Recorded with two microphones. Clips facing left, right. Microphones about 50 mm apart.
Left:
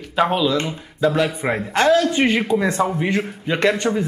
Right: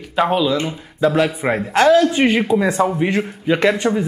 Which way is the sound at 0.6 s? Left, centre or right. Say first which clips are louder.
Right 2 dB; centre.